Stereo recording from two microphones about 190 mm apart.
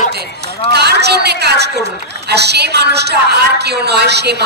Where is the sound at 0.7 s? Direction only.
60° right (ahead or behind).